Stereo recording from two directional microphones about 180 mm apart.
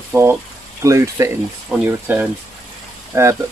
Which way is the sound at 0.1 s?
15° right (ahead or behind).